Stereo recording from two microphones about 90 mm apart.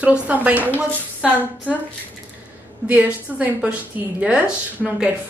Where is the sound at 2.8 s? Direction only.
15° right (ahead or behind).